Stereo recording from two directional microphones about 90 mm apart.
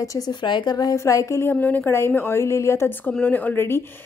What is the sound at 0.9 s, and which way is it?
Speech, 35° left (ahead or behind).